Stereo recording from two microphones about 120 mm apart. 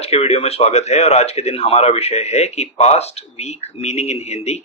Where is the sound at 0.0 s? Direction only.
60° left (ahead or behind).